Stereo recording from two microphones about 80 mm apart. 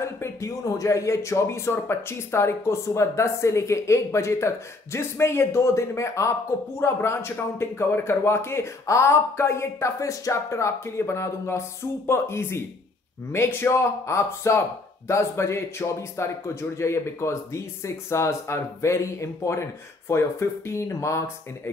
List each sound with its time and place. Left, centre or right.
0.0 s speech: left